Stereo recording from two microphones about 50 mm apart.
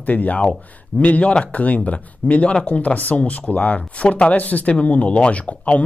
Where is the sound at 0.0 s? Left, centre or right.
Left.